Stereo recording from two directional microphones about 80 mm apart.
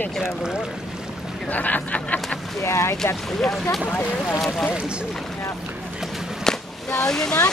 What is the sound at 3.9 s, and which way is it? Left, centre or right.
Speech, left.